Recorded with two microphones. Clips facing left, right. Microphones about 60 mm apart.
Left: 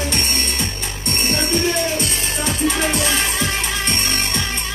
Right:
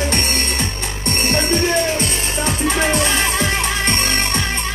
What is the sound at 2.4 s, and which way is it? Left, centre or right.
Music, right.